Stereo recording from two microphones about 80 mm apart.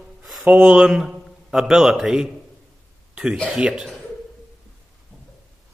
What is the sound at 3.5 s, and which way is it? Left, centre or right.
Speech, centre.